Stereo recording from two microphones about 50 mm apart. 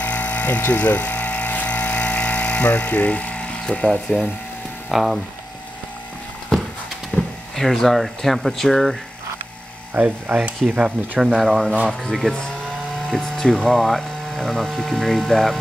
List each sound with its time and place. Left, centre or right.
0.0 s vehicle: left
0.7 s power tool: left
4.9 s speech: centre
7.2 s speech: centre
9.9 s speech: right
11.1 s speech: centre